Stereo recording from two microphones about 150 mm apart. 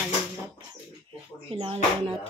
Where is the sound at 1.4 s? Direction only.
40° right (ahead or behind).